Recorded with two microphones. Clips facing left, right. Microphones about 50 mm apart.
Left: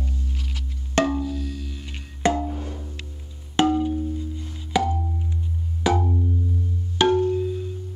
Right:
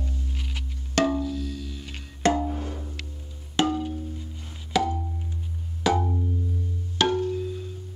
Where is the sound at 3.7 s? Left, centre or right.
Centre.